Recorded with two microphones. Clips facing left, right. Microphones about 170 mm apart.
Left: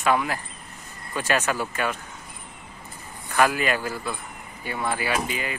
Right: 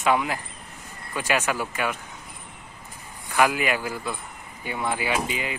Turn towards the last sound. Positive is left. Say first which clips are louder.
# even
turn(degrees=-20)  # may be behind; listen again after turning